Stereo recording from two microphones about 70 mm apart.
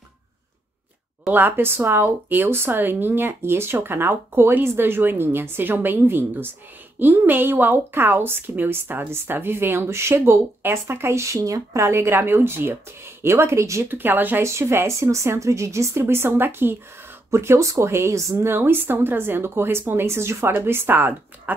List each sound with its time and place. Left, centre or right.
1.3 s a woman's voice: right
13.8 s speech: right
14.4 s a woman's voice: right